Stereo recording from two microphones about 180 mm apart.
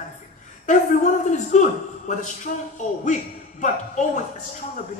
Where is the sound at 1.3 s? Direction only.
40° left (ahead or behind).